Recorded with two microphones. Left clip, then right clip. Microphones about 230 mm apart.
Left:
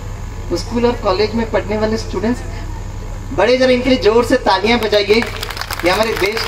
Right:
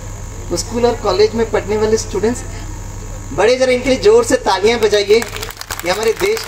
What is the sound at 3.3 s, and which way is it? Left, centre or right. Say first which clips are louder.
A man's voice: even; right.